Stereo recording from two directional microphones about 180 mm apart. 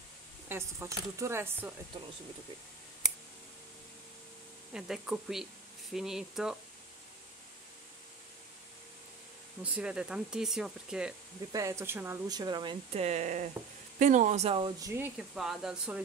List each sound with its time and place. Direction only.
0.5 s speech: 15° right (ahead or behind)
4.7 s speech: 5° right (ahead or behind)
9.6 s speech: 5° right (ahead or behind)
11.5 s speech: 15° right (ahead or behind)
13.0 s speech: 40° right (ahead or behind)
14.8 s speech: 15° right (ahead or behind)